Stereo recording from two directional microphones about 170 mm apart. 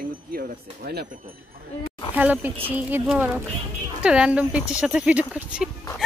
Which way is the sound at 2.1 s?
10° right (ahead or behind).